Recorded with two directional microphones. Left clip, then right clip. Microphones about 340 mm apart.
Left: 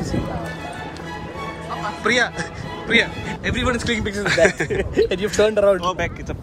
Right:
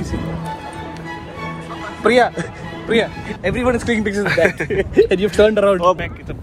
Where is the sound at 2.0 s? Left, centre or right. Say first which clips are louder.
Right 6 dB; centre.